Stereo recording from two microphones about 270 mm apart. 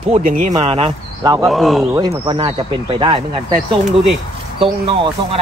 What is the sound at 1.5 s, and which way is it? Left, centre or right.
Speech, centre.